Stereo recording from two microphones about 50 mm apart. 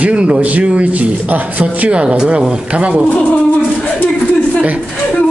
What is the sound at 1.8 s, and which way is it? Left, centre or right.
Speech, centre.